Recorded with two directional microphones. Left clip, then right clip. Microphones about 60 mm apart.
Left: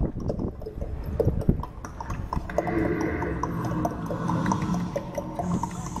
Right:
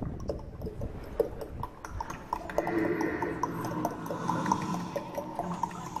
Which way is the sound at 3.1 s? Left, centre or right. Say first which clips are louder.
Left 3 dB; centre.